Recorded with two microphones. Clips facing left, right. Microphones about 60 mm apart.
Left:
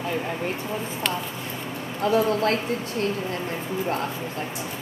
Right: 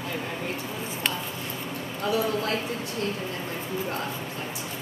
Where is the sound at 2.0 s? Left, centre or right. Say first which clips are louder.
Left 5 dB; left.